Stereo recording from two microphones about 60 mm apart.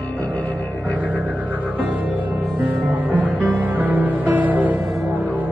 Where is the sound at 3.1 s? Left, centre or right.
Right.